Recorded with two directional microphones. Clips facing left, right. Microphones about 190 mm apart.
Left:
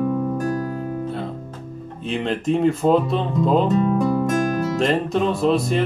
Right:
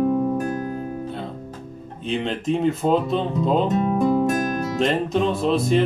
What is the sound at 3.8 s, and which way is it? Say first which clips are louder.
Music: even; 20° right (ahead or behind).